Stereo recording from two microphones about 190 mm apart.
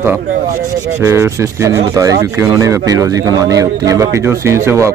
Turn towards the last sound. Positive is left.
turn(degrees=-15)  # may be behind; listen again after turning